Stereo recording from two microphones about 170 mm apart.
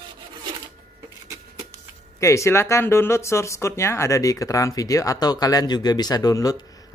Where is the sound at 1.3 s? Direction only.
20° right (ahead or behind).